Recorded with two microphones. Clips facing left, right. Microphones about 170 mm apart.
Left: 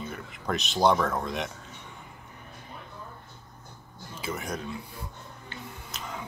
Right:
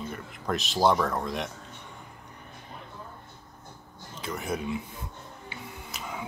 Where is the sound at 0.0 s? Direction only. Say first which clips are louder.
Even; centre (ahead or behind).